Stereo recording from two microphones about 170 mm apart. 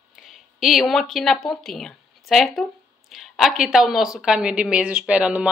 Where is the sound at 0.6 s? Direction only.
Centre (ahead or behind).